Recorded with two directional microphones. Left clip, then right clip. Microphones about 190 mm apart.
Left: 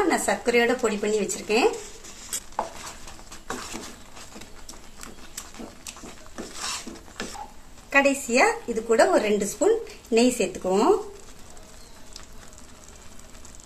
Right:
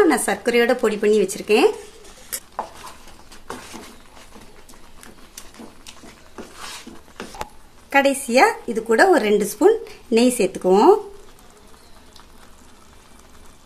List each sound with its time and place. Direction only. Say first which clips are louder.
0.1 s a woman's voice: right 3 dB; 60° right (ahead or behind)
7.9 s a woman's voice: right 4 dB; 60° right (ahead or behind)